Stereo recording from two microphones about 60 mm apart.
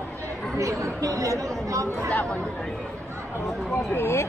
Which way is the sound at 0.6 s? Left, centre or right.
Right.